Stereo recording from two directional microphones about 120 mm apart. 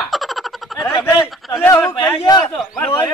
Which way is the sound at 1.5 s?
20° left (ahead or behind).